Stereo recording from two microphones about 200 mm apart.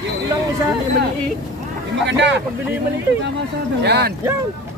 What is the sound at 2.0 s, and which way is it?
Speech, 65° right (ahead or behind).